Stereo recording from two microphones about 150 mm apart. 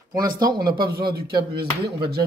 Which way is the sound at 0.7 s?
90° right.